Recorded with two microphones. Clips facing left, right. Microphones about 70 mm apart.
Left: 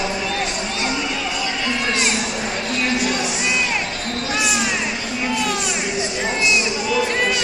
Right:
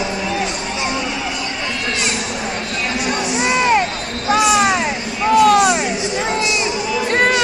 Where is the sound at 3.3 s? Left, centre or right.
Right.